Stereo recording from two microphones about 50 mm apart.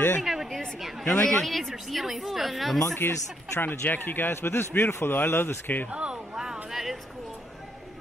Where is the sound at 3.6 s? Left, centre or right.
Left.